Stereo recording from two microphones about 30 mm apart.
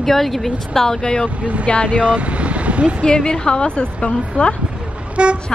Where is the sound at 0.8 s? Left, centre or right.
Left.